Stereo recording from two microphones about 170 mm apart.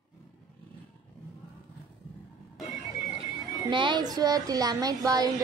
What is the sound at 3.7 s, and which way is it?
Speech, 30° right (ahead or behind).